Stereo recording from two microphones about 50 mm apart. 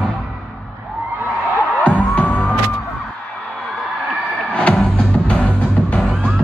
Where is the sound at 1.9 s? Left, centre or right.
Left.